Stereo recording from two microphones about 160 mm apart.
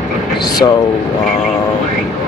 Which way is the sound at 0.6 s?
20° left (ahead or behind).